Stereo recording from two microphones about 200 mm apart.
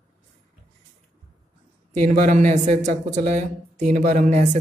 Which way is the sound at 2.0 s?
35° right (ahead or behind).